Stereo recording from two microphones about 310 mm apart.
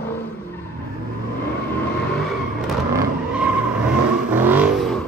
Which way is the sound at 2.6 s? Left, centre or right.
Centre.